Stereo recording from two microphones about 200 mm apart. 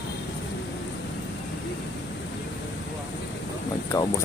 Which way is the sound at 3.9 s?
20° left (ahead or behind).